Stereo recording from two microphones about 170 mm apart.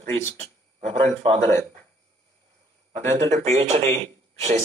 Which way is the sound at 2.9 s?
40° right (ahead or behind).